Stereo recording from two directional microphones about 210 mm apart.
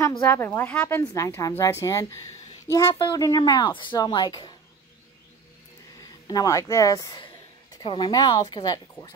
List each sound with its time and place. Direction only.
0.3 s a woman's voice: 10° left (ahead or behind)
6.2 s a woman's voice: 15° left (ahead or behind)